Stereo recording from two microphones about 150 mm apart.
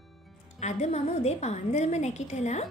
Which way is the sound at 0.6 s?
50° left (ahead or behind).